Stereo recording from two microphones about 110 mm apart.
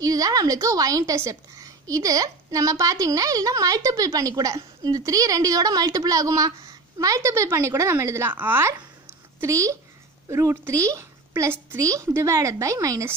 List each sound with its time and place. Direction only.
0.0 s a woman's voice: 35° right (ahead or behind)